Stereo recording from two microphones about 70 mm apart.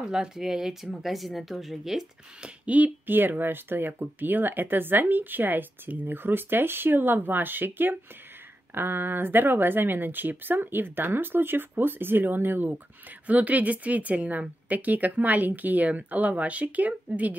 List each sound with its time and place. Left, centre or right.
0.0 s speech: centre
2.6 s speech: right